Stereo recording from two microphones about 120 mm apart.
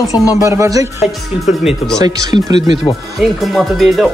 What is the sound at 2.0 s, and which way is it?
Speech, 35° right (ahead or behind).